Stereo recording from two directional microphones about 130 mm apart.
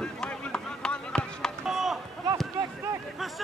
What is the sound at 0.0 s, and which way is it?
Run, 5° left (ahead or behind).